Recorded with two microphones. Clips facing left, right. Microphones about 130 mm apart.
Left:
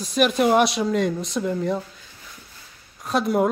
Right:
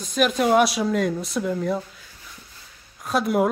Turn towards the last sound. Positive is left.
turn(degrees=0)  # may be behind; listen again after turning